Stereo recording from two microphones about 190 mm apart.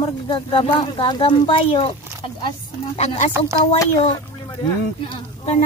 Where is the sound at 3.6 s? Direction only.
15° left (ahead or behind).